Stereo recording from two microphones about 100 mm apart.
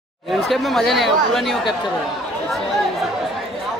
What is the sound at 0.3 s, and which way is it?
Speech, centre (ahead or behind).